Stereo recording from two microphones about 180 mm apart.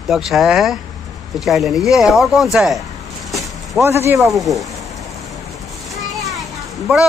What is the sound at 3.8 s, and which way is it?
Speech, 15° right (ahead or behind).